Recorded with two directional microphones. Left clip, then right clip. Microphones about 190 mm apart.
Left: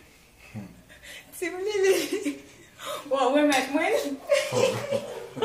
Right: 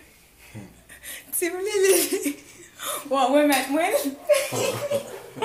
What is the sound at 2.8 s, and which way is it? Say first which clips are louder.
Chuckle: right 3 dB; 25° right (ahead or behind).